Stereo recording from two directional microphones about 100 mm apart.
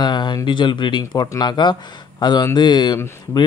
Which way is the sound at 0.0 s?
50° left (ahead or behind).